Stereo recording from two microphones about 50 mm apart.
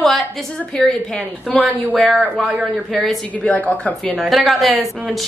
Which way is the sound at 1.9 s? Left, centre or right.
Centre.